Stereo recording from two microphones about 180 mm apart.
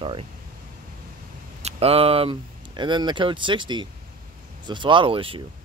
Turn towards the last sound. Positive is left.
turn(degrees=-30)  # may be behind; listen again after turning